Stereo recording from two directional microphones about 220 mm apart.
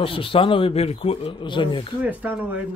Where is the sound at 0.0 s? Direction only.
25° left (ahead or behind).